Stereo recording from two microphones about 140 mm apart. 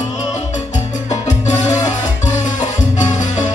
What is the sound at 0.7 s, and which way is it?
Salsa music, 55° left (ahead or behind).